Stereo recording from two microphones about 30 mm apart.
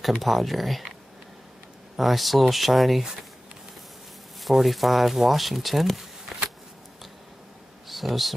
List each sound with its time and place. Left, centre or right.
0.2 s speech: centre
2.0 s speech: centre
4.4 s speech: centre
7.9 s speech: centre